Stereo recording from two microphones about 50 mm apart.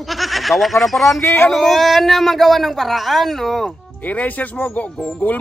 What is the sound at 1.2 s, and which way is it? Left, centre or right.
Speech, left.